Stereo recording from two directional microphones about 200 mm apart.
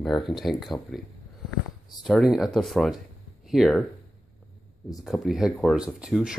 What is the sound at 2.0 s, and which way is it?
Speech, centre (ahead or behind).